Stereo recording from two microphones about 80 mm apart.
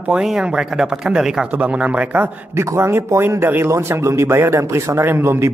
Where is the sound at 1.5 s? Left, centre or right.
Centre.